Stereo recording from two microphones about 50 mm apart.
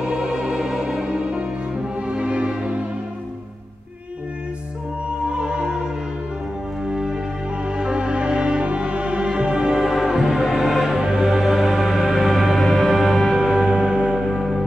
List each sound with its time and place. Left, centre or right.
0.1 s music: centre
5.2 s music: centre
13.4 s music: centre
14.2 s music: centre